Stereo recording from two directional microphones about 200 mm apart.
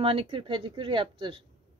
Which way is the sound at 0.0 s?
25° right (ahead or behind).